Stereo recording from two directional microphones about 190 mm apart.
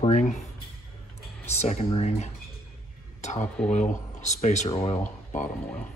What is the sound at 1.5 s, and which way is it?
Speech, 35° left (ahead or behind).